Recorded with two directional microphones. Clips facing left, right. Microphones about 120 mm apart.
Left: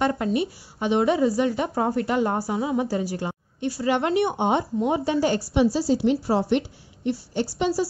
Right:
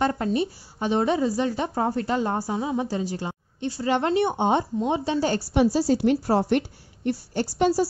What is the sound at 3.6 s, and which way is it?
A woman's voice, 25° right (ahead or behind).